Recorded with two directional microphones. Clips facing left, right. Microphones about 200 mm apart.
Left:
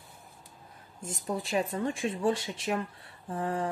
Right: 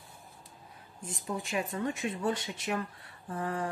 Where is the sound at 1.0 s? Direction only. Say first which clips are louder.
Left 3 dB; 40° left (ahead or behind).